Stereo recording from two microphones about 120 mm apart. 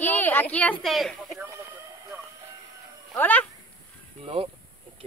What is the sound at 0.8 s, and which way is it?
Speech, centre (ahead or behind).